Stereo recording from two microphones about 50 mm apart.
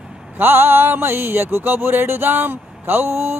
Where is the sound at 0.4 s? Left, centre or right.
Right.